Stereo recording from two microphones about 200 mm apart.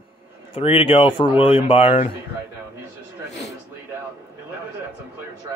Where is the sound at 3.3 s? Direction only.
60° left (ahead or behind).